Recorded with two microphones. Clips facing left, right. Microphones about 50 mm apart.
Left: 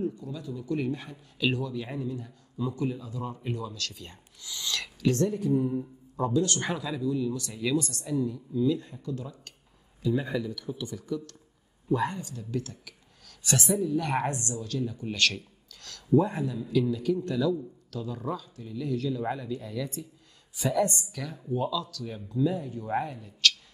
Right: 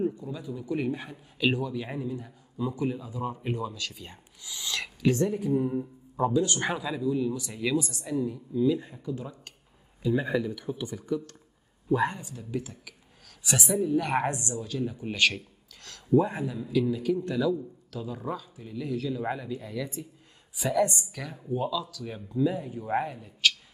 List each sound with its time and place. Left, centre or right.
0.0 s a man's voice: right